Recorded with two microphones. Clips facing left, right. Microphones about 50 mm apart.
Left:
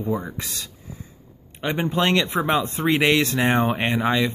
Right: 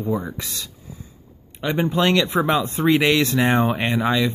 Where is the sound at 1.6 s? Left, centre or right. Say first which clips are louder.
Right 2 dB; centre.